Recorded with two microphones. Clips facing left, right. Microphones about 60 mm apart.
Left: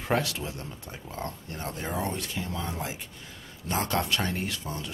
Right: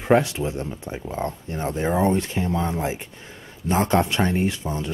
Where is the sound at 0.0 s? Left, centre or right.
Right.